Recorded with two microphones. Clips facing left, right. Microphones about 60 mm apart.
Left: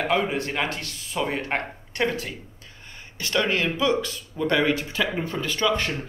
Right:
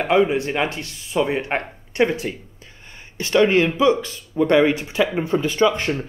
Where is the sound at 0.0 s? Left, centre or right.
Centre.